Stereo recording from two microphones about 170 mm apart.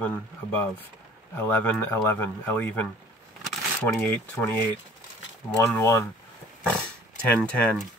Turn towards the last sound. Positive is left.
turn(degrees=0)  # may be behind; listen again after turning